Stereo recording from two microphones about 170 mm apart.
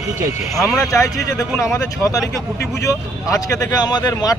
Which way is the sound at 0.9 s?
20° left (ahead or behind).